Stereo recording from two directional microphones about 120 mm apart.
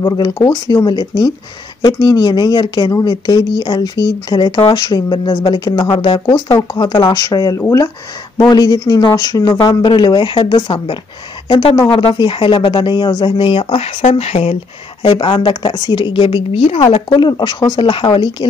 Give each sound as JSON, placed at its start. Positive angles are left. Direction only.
{"t": 0.0, "sound": "speech", "side_deg": 30}
{"t": 11.9, "sound": "speech", "side_deg": 50}
{"t": 17.1, "sound": "speech", "side_deg": 40}